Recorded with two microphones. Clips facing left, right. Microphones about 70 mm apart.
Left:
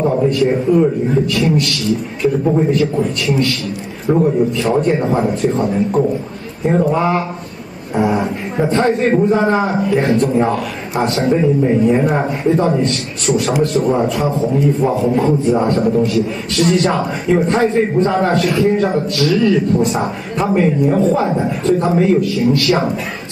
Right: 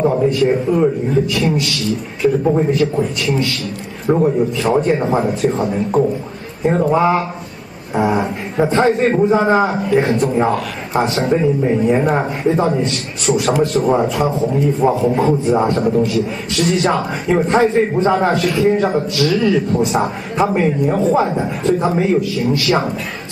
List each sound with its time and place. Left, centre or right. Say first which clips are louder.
0.0 s a man's voice: even; centre
9.9 s speech: even; centre
10.5 s a man's voice: right 1 dB; centre
17.3 s a man's voice: even; centre